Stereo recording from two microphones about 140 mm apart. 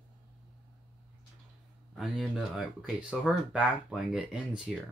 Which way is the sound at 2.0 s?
Centre (ahead or behind).